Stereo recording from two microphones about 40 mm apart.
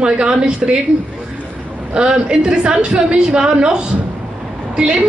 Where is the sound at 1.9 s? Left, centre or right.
Right.